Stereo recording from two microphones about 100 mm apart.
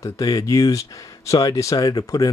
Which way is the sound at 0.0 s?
35° left (ahead or behind).